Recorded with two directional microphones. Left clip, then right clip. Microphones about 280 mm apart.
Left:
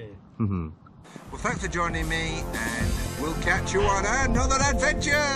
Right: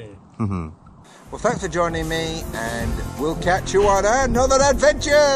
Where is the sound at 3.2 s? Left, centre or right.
Left.